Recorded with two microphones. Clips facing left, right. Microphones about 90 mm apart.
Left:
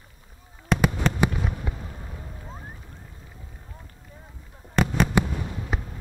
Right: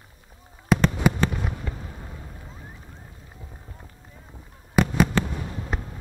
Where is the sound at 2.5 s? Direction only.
35° left (ahead or behind).